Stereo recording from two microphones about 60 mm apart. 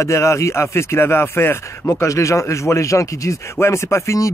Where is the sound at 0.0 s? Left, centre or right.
Left.